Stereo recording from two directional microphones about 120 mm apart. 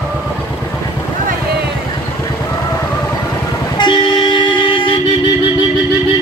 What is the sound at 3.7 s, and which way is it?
Vehicle, 40° left (ahead or behind).